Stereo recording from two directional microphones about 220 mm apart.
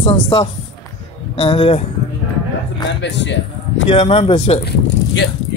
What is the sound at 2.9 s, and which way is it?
Speech, 55° left (ahead or behind).